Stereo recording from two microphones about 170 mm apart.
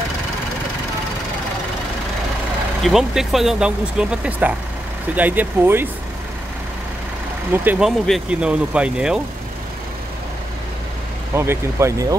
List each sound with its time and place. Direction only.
2.8 s speech: centre (ahead or behind)
7.5 s speech: 10° right (ahead or behind)
11.3 s speech: 15° right (ahead or behind)